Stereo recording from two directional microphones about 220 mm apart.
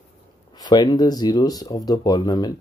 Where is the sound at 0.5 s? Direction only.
20° left (ahead or behind).